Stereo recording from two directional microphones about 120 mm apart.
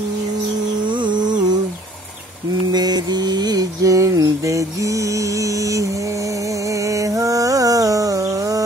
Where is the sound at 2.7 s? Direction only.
35° right (ahead or behind).